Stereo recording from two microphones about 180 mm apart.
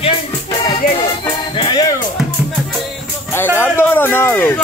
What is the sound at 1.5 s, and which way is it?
Music, 25° left (ahead or behind).